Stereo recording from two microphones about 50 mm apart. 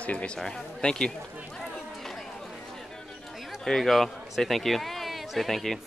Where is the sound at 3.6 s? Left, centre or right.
Centre.